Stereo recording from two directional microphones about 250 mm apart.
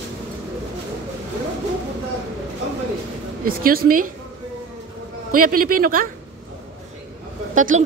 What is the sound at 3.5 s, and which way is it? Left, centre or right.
Speech, right.